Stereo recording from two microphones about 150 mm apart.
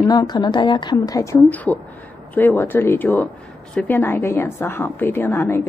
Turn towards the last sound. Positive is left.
turn(degrees=15)  # may be behind; listen again after turning